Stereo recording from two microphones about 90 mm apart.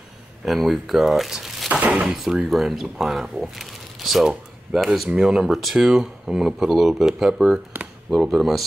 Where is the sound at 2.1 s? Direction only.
5° right (ahead or behind).